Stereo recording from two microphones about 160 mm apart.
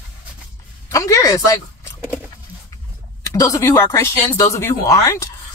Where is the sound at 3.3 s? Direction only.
20° left (ahead or behind).